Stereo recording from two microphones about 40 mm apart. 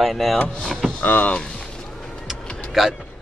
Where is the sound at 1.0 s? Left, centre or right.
Left.